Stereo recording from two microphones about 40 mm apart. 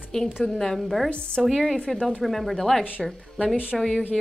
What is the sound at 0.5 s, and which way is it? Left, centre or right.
Speech, centre.